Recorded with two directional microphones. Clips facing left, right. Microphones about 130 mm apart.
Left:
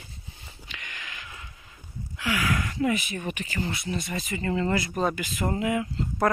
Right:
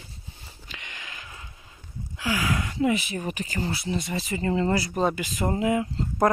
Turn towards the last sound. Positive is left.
turn(degrees=-25)  # may be behind; listen again after turning